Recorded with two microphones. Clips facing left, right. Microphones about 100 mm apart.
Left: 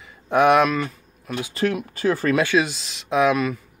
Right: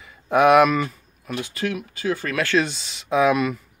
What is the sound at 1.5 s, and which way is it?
Speech, 35° left (ahead or behind).